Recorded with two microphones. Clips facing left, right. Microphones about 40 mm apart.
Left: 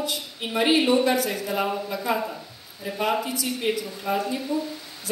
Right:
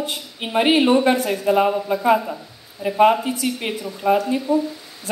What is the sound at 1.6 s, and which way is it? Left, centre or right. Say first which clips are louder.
Speech: right 8 dB; right.